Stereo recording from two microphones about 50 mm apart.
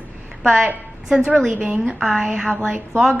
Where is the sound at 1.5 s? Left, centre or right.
Right.